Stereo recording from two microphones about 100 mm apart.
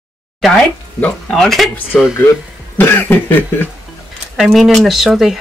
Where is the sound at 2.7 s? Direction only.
20° left (ahead or behind).